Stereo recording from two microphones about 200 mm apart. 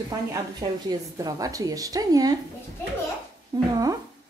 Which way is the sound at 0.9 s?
20° right (ahead or behind).